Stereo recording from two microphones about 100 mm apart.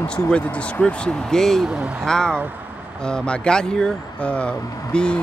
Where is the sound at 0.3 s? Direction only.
10° left (ahead or behind).